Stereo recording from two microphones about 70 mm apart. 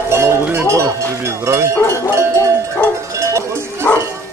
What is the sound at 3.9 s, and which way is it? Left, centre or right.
Dog, left.